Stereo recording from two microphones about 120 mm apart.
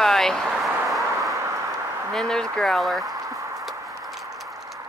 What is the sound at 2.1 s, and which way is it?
Speech, 5° left (ahead or behind).